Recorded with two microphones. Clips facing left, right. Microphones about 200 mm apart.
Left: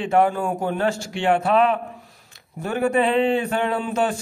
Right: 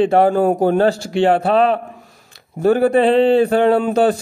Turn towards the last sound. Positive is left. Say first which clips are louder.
# right 9 dB
turn(degrees=-40)  # may be behind; listen again after turning